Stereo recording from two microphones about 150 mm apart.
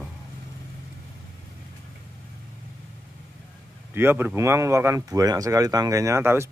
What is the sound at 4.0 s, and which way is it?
Speech, 15° right (ahead or behind).